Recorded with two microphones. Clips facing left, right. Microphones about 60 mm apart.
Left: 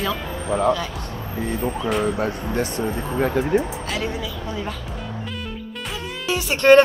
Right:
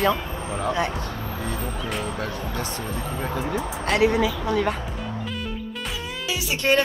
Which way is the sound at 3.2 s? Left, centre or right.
Left.